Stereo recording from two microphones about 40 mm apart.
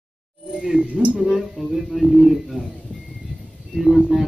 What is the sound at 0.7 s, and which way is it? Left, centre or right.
Speech, right.